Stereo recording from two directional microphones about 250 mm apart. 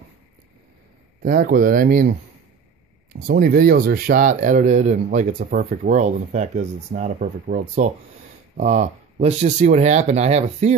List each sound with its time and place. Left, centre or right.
1.2 s speech: right
3.1 s speech: right